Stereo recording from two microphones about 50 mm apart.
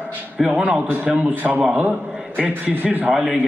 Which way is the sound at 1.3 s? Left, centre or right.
Right.